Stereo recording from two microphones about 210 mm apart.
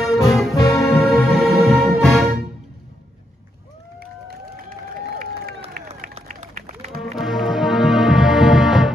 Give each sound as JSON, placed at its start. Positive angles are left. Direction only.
{"t": 0.0, "sound": "music", "side_deg": 0}
{"t": 4.3, "sound": "run", "side_deg": -45}
{"t": 7.0, "sound": "music", "side_deg": 0}